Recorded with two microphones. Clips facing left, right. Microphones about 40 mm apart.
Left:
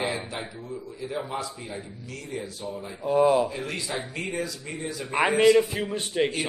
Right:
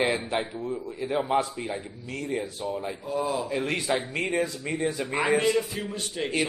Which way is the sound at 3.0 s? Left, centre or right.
Left.